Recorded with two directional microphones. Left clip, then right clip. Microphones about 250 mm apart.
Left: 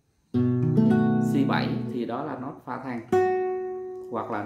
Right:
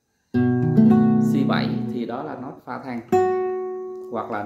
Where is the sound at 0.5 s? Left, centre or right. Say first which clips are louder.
Right 6 dB; right.